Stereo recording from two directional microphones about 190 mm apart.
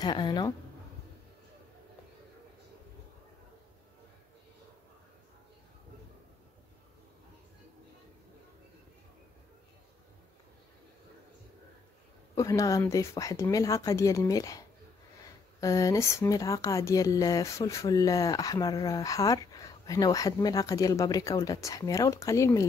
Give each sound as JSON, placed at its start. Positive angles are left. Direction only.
{"t": 0.0, "sound": "speech", "side_deg": 25}
{"t": 12.4, "sound": "speech", "side_deg": 15}